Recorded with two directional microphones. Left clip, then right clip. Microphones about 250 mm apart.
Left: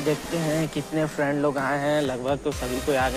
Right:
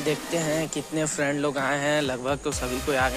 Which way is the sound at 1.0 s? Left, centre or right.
Right.